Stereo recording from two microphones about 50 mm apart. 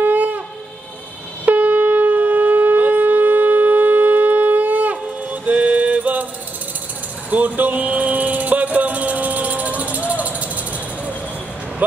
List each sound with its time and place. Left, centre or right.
0.0 s shofar: right
1.4 s shofar: right
7.2 s music: right